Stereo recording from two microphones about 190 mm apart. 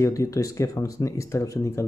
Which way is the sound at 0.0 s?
15° left (ahead or behind).